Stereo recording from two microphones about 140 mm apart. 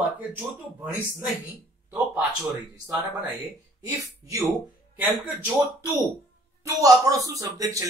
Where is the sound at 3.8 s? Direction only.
25° right (ahead or behind).